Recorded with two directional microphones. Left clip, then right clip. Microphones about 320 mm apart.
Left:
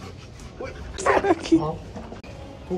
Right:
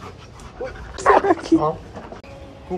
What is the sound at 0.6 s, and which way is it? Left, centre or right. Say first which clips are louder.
Dog: right 6 dB; centre.